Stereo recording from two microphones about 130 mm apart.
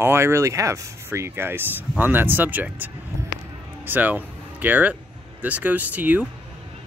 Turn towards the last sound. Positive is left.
turn(degrees=-15)  # may be behind; listen again after turning